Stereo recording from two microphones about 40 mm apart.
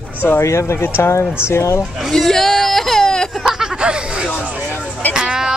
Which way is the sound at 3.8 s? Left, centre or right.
Right.